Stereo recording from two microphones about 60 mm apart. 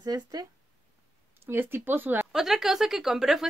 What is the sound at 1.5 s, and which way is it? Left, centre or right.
Speech, right.